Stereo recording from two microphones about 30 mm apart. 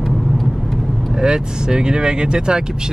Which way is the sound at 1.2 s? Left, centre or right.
Right.